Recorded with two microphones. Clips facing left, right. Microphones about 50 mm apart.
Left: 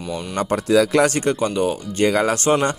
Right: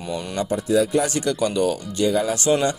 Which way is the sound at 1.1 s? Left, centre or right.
Left.